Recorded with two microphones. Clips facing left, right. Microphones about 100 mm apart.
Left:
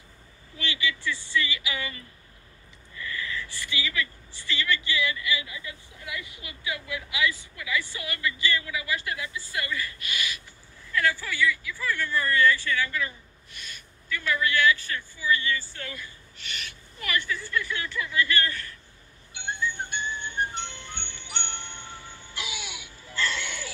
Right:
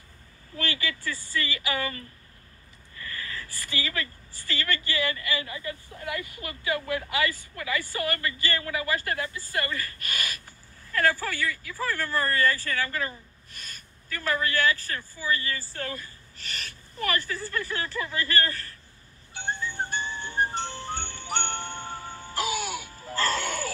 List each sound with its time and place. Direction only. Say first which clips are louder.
0.6 s a woman's voice: even; 45° right (ahead or behind)
19.3 s music: even; 35° right (ahead or behind)